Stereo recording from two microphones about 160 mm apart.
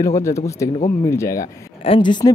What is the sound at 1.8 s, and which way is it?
Speech, 35° left (ahead or behind).